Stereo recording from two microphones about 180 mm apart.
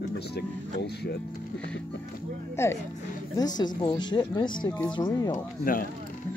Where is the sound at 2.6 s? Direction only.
15° left (ahead or behind).